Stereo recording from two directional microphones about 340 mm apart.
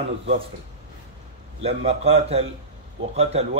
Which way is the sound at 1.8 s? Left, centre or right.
Centre.